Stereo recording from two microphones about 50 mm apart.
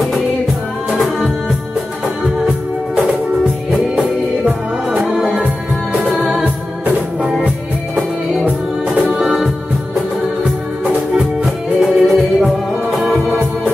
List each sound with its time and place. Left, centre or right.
0.9 s music: centre
3.7 s music: centre
7.3 s music: centre
11.4 s music: centre